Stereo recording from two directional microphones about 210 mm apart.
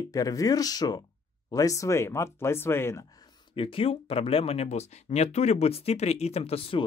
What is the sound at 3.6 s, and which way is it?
Speech, 25° left (ahead or behind).